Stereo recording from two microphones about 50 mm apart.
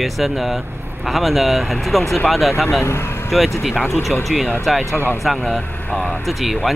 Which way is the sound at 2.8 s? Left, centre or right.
Left.